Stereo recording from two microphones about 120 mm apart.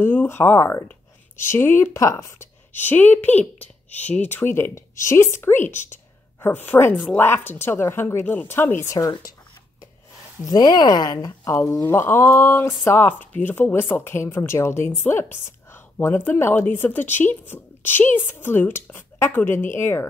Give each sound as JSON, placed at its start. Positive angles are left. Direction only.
{"t": 0.0, "sound": "speech", "side_deg": 15}
{"t": 10.4, "sound": "speech", "side_deg": 35}